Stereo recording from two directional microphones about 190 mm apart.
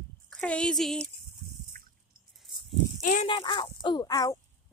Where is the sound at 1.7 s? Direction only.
50° right (ahead or behind).